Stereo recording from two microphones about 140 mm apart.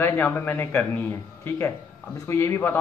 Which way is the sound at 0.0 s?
15° left (ahead or behind).